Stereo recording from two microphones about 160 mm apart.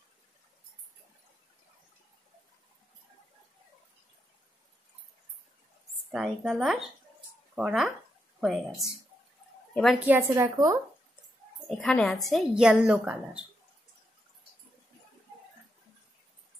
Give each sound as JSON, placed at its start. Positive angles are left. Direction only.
{"t": 6.1, "sound": "a woman's voice", "side_deg": -5}
{"t": 10.0, "sound": "a woman's voice", "side_deg": -10}
{"t": 11.7, "sound": "a woman's voice", "side_deg": 5}